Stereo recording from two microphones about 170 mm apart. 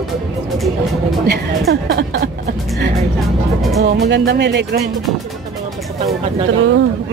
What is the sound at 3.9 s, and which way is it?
Speech, 80° right.